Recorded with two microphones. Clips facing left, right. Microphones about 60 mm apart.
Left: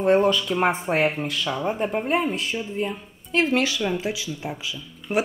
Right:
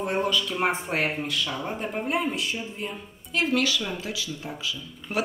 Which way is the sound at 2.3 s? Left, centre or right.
Left.